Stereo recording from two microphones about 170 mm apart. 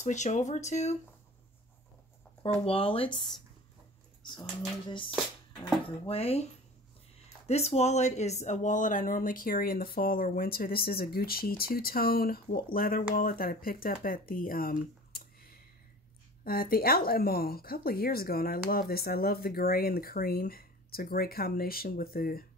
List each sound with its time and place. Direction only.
0.0 s speech: 45° left (ahead or behind)
2.6 s speech: 35° left (ahead or behind)
4.2 s a sound: 25° left (ahead or behind)
5.6 s speech: 35° left (ahead or behind)
7.4 s speech: 40° left (ahead or behind); by 22.4 s 60° left (ahead or behind)